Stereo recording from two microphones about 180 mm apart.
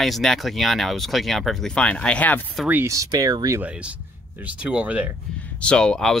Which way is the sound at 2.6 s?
15° right (ahead or behind).